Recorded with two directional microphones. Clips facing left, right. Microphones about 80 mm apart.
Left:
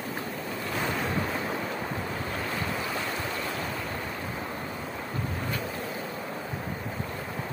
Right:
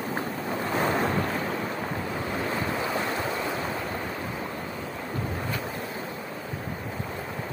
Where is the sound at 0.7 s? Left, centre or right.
Right.